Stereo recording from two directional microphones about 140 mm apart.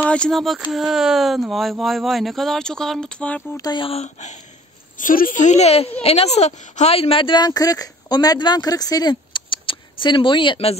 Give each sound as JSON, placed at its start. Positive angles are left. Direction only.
{"t": 0.0, "sound": "a sound", "side_deg": 5}
{"t": 0.7, "sound": "speech", "side_deg": 0}
{"t": 3.5, "sound": "speech", "side_deg": 25}
{"t": 3.8, "sound": "speech", "side_deg": 50}
{"t": 4.9, "sound": "a woman's voice", "side_deg": 75}